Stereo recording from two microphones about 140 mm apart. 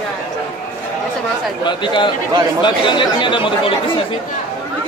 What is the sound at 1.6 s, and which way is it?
Speech, 35° left (ahead or behind).